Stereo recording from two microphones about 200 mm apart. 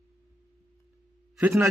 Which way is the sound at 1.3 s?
5° right (ahead or behind).